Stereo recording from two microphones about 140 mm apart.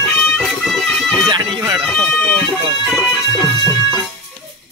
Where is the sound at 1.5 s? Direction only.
30° right (ahead or behind).